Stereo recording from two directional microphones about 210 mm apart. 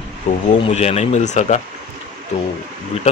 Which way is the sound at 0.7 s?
30° left (ahead or behind).